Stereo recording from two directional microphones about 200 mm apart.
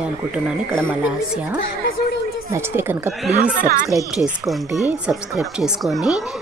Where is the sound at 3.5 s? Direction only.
40° right (ahead or behind).